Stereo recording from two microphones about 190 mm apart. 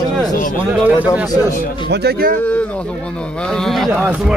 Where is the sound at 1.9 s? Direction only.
55° right (ahead or behind).